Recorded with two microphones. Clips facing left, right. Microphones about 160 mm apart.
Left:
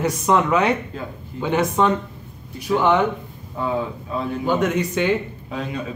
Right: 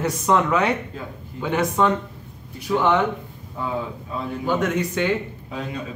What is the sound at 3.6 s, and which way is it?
Speech, 75° left (ahead or behind).